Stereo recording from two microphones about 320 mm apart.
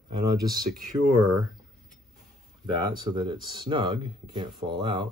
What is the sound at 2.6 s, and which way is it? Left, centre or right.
Speech, centre.